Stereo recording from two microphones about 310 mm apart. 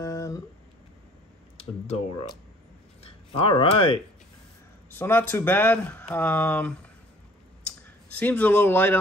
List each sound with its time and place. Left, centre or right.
0.0 s a sound: centre
1.6 s speech: centre
8.1 s speech: centre